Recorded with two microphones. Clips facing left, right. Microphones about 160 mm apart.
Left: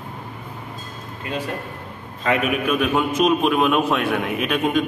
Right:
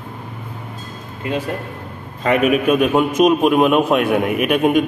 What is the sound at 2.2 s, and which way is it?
Speech, 45° right (ahead or behind).